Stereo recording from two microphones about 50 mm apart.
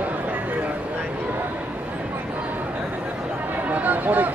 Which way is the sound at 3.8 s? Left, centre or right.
Right.